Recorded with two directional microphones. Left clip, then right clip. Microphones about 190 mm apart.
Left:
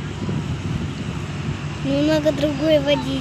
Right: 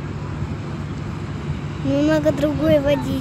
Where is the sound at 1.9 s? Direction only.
Centre (ahead or behind).